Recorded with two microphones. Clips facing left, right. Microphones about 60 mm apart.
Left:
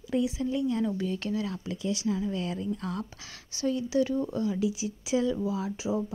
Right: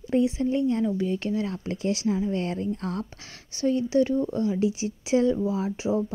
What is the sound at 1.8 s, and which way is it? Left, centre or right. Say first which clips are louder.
Speech: right 4 dB; right.